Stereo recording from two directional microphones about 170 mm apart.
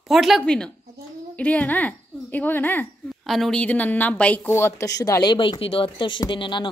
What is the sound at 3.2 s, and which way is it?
Speech, centre (ahead or behind).